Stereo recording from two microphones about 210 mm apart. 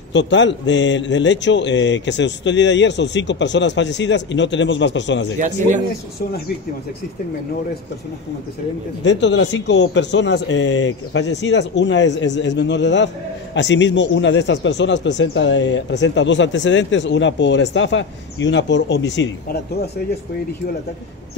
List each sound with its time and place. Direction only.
0.1 s speech: 60° left (ahead or behind)
9.0 s speech: 60° left (ahead or behind)